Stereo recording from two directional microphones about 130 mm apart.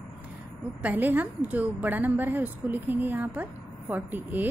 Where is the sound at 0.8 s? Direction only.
15° right (ahead or behind).